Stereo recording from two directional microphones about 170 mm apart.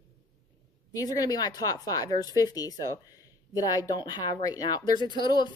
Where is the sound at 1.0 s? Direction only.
20° left (ahead or behind).